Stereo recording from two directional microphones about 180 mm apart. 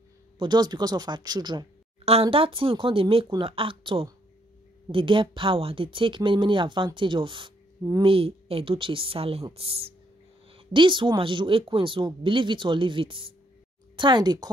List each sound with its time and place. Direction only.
0.4 s speech: 25° right (ahead or behind)